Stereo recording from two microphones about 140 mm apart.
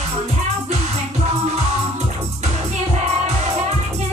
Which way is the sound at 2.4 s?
50° right (ahead or behind).